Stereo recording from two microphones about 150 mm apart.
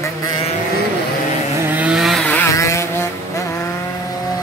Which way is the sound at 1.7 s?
10° right (ahead or behind).